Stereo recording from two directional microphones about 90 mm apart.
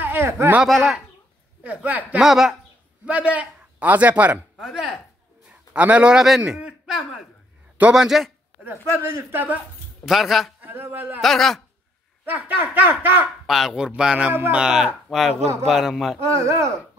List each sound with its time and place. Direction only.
0.0 s a sound: 25° right (ahead or behind)
0.7 s a man's voice: centre (ahead or behind)
1.6 s a man's voice: 20° right (ahead or behind)
2.1 s a man's voice: 5° right (ahead or behind)
3.1 s a man's voice: 15° right (ahead or behind)
4.6 s a man's voice: 5° right (ahead or behind)
5.5 s a man's voice: 15° right (ahead or behind)
8.6 s speech: 20° right (ahead or behind)
10.0 s a man's voice: 5° right (ahead or behind)
10.6 s speech: 25° right (ahead or behind)
11.1 s a man's voice: 5° left (ahead or behind)
12.3 s speech: 20° right (ahead or behind)
13.5 s a man's voice: centre (ahead or behind)
16.3 s speech: 35° right (ahead or behind)